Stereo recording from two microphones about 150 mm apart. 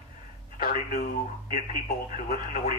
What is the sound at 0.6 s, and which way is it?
Speech, 60° left (ahead or behind).